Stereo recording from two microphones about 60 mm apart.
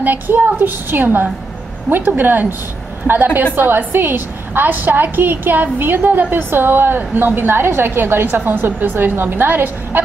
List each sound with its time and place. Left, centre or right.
0.0 s a woman's voice: right
3.5 s a woman's voice: right